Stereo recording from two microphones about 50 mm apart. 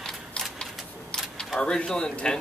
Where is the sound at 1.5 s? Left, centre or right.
Centre.